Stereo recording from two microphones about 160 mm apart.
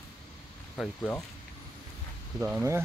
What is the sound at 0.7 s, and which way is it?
Speech, 10° left (ahead or behind).